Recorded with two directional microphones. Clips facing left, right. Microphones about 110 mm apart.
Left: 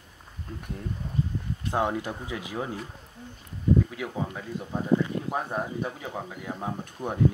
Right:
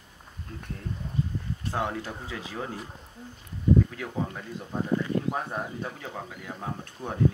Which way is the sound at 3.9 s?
10° left (ahead or behind).